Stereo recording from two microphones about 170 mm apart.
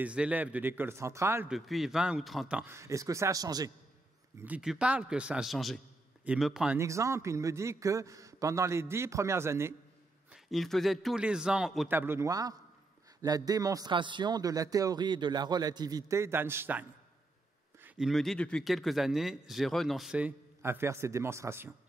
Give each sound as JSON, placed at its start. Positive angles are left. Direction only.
{"t": 0.0, "sound": "a man's voice", "side_deg": -5}
{"t": 1.5, "sound": "a man's voice", "side_deg": 0}
{"t": 4.4, "sound": "speech", "side_deg": -5}
{"t": 6.8, "sound": "a man's voice", "side_deg": -15}
{"t": 10.3, "sound": "speech", "side_deg": 0}
{"t": 11.9, "sound": "a man's voice", "side_deg": -15}
{"t": 17.8, "sound": "speech", "side_deg": -5}